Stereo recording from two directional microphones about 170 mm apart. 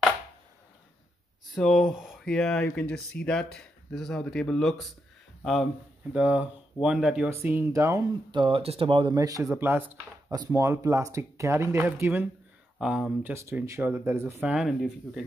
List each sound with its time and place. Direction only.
1.5 s speech: centre (ahead or behind); by 14.5 s 15° right (ahead or behind)
14.5 s speech: centre (ahead or behind)